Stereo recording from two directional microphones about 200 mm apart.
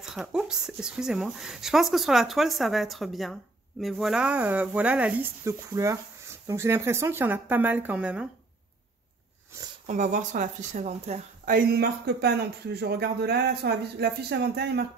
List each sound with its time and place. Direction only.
0.0 s speech: 5° right (ahead or behind)
9.8 s speech: 40° right (ahead or behind); by 14.9 s 55° right (ahead or behind)